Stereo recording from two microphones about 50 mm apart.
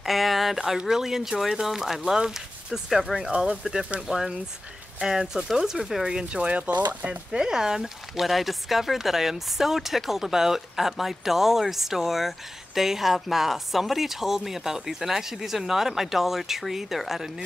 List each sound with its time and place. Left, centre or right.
0.0 s a sound: centre
0.6 s speech: centre
3.2 s speech: centre
7.2 s speech: centre